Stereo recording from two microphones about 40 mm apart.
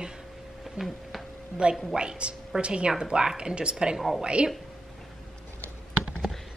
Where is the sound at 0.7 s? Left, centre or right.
Centre.